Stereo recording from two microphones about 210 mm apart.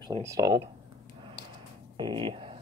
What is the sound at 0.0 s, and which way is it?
Speech, 15° right (ahead or behind).